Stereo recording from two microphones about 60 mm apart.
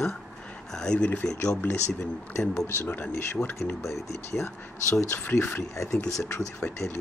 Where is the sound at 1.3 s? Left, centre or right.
Left.